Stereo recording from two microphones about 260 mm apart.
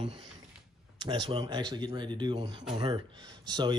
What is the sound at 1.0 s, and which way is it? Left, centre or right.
Speech, centre.